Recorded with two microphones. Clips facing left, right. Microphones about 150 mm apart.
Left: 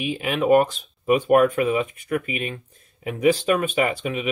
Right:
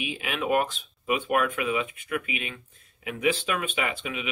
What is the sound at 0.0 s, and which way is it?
Speech, 45° left (ahead or behind).